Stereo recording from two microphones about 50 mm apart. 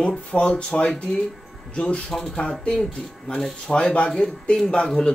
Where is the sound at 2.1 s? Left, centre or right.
Centre.